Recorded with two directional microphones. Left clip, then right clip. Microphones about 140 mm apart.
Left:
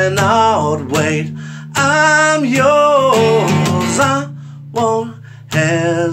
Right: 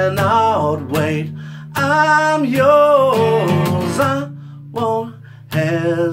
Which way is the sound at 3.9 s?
15° left (ahead or behind).